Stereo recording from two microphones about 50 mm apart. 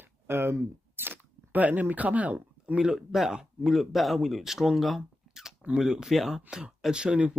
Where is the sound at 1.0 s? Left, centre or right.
Right.